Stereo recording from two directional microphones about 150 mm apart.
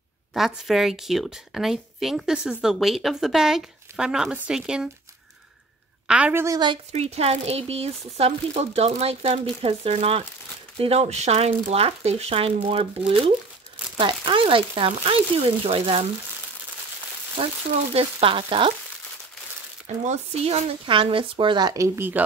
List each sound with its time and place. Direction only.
0.3 s a woman's voice: centre (ahead or behind)
6.0 s a woman's voice: 10° right (ahead or behind)
6.4 s a woman's voice: 25° right (ahead or behind)
6.9 s speech: 45° right (ahead or behind)
17.4 s speech: 45° right (ahead or behind)
20.1 s speech: 45° right (ahead or behind); by 22.2 s 15° right (ahead or behind)